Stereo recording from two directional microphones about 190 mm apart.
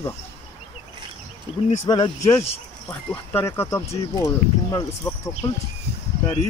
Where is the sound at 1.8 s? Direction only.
25° left (ahead or behind).